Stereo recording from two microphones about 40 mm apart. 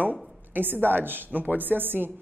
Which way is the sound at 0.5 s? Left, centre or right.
Right.